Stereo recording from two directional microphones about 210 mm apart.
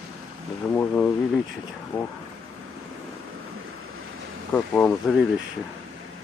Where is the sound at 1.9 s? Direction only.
20° left (ahead or behind).